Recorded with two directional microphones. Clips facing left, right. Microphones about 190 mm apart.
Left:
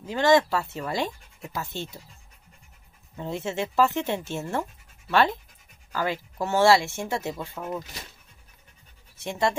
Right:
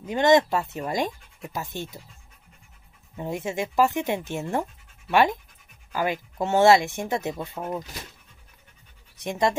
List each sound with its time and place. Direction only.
0.0 s speech: 20° right (ahead or behind)
3.2 s speech: 15° right (ahead or behind)
9.1 s speech: 15° right (ahead or behind)